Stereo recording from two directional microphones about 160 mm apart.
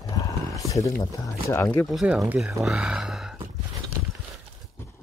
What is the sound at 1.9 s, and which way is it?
Speech, centre (ahead or behind).